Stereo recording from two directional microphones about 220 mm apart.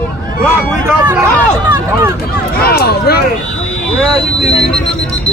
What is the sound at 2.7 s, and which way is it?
Speech, 45° left (ahead or behind).